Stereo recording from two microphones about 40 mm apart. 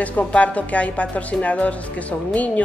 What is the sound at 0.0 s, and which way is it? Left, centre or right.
Speech, left.